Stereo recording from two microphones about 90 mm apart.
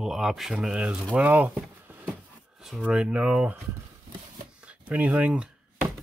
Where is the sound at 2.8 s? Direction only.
10° right (ahead or behind).